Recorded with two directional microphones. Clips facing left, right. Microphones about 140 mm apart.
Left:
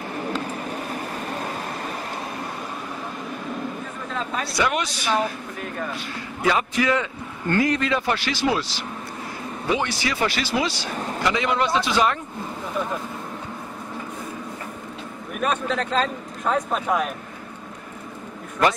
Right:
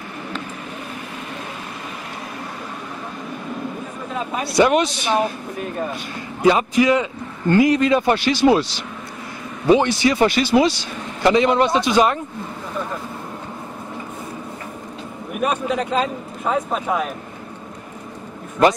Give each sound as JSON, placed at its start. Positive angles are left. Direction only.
{"t": 4.1, "sound": "a man's voice", "side_deg": -15}
{"t": 15.3, "sound": "a man's voice", "side_deg": -10}